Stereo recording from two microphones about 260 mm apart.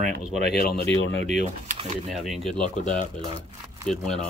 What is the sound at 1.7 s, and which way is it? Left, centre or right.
Speech, right.